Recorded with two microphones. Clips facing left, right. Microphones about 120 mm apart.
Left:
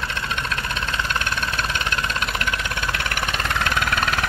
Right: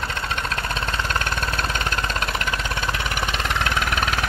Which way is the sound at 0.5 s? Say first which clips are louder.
Right 1 dB; 35° right (ahead or behind).